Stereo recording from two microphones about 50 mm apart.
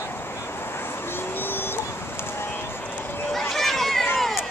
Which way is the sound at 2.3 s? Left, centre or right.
Left.